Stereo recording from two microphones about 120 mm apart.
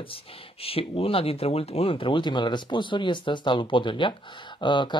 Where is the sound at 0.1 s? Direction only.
50° left (ahead or behind).